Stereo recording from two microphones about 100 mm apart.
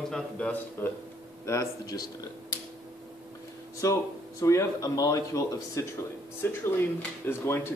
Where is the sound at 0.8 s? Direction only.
20° left (ahead or behind); by 2.2 s 35° left (ahead or behind).